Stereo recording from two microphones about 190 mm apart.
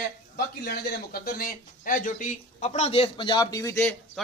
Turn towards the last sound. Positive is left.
turn(degrees=15)  # may be behind; listen again after turning